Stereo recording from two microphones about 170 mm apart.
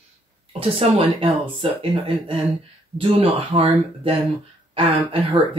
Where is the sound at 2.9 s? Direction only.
30° right (ahead or behind).